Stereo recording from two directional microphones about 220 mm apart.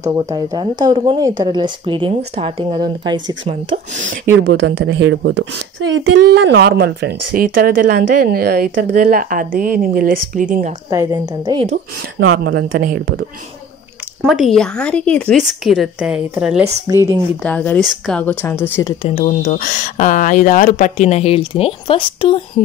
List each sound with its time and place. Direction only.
0.1 s speech: 15° right (ahead or behind)
4.5 s a woman's voice: 55° right (ahead or behind); by 10.7 s 35° right (ahead or behind)
10.9 s a woman's voice: 15° right (ahead or behind)
12.4 s speech: 45° right (ahead or behind)
14.2 s a woman's voice: centre (ahead or behind)
17.4 s a woman's voice: 5° left (ahead or behind)
19.0 s speech: 30° left (ahead or behind)